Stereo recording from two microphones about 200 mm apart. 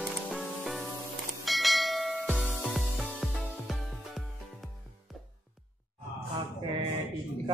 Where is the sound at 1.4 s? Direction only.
Centre (ahead or behind).